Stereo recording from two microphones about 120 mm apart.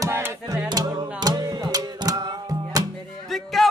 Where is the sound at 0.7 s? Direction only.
35° right (ahead or behind).